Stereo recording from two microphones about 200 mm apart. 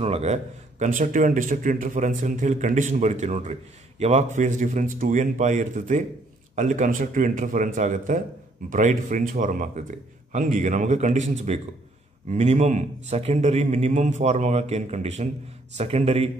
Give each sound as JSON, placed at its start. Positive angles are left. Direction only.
{"t": 0.0, "sound": "a man's voice", "side_deg": -35}